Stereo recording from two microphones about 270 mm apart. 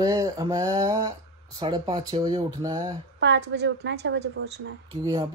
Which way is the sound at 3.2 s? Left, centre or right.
Right.